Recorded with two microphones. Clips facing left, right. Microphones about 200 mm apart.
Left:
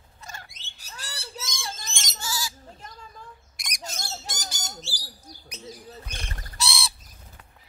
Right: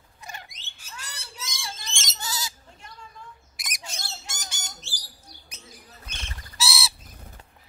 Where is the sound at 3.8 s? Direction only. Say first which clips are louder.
Left 5 dB; 45° left (ahead or behind).